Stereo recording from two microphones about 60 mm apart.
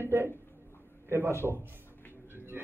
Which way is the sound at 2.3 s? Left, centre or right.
Right.